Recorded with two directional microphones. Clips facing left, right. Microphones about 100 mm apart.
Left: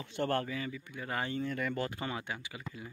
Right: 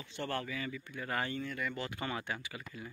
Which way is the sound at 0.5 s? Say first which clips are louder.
Left 2 dB; 20° left (ahead or behind).